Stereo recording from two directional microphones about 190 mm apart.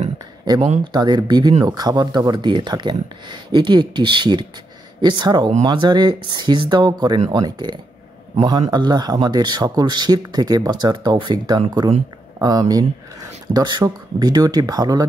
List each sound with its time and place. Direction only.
0.5 s speech: 20° right (ahead or behind)